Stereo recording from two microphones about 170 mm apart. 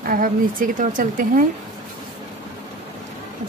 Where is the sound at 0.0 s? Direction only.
55° right (ahead or behind).